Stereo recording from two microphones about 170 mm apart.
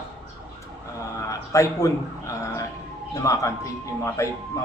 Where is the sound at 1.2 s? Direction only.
20° left (ahead or behind).